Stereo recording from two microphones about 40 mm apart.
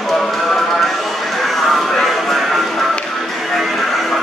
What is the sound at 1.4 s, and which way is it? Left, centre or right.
Music, centre.